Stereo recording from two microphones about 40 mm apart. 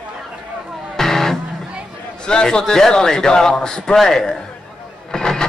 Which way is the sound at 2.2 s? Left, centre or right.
Centre.